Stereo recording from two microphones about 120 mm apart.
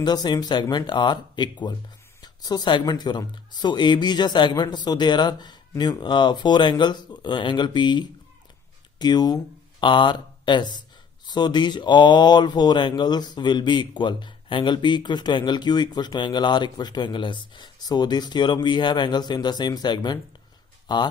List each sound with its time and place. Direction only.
0.0 s speech: 35° left (ahead or behind)